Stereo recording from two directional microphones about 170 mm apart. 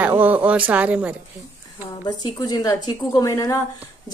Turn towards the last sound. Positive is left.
turn(degrees=20)  # may be behind; listen again after turning